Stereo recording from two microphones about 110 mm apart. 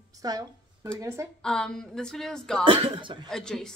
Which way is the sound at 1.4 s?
5° left (ahead or behind).